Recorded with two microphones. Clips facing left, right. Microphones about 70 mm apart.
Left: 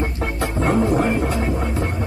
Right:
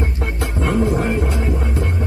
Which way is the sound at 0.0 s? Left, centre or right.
Left.